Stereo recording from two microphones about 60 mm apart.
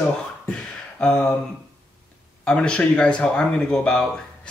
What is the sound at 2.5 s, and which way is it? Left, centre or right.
Speech, centre.